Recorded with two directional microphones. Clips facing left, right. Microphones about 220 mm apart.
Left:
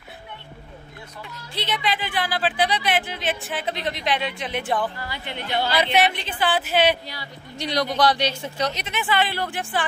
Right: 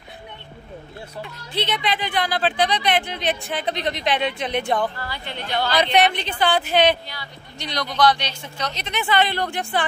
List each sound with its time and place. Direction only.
1.6 s speech: centre (ahead or behind)
4.9 s a woman's voice: 15° left (ahead or behind)
8.0 s a man's voice: 35° left (ahead or behind)
8.3 s speech: 10° left (ahead or behind)